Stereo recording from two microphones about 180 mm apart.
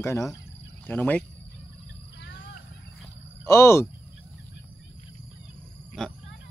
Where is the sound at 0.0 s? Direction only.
15° left (ahead or behind).